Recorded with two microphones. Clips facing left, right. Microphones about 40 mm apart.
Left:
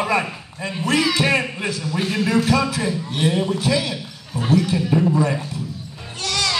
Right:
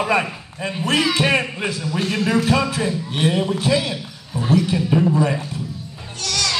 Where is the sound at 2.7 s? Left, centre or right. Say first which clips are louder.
Right 1 dB; right.